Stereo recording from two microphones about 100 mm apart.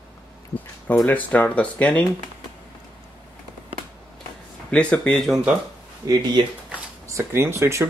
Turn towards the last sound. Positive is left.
turn(degrees=-25)  # may be behind; listen again after turning